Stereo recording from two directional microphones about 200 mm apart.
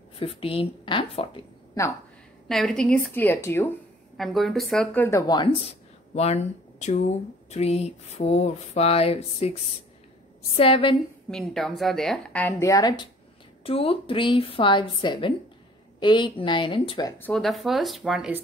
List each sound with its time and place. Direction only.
0.2 s a woman's voice: 25° left (ahead or behind)
2.4 s a woman's voice: centre (ahead or behind)
4.2 s a woman's voice: centre (ahead or behind); by 11.0 s 25° left (ahead or behind)
11.2 s a woman's voice: centre (ahead or behind); by 17.1 s 25° left (ahead or behind)
17.2 s a woman's voice: 5° left (ahead or behind)